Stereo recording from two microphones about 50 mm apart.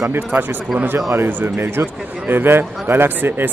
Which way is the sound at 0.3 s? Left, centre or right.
Right.